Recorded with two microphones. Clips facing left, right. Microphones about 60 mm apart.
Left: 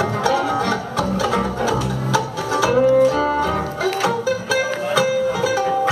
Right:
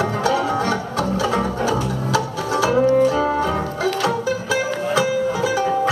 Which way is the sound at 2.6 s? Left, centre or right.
Left.